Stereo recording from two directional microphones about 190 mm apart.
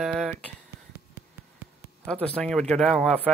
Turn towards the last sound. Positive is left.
turn(degrees=0)  # may be behind; listen again after turning